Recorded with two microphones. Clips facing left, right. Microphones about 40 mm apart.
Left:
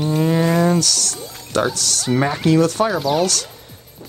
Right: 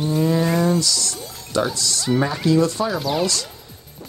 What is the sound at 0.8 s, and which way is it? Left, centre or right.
Speech, left.